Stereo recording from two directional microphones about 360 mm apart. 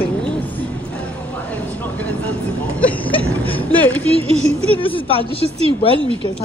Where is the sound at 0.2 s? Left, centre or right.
Centre.